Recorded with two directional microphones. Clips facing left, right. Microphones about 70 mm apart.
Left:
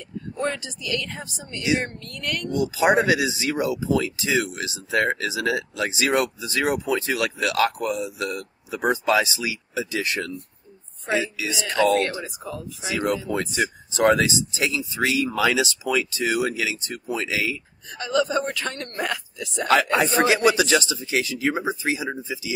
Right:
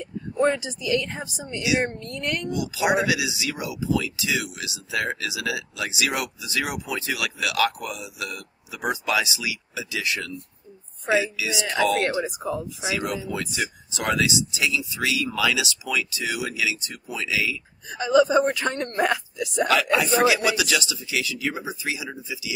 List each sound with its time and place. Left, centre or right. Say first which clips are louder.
0.0 s speech: right 5 dB; centre
2.5 s speech: left 5 dB; left
11.5 s a woman's voice: left 3 dB; centre
12.9 s speech: left 5 dB; left
17.9 s a woman's voice: right 5 dB; centre
19.7 s speech: left 3 dB; left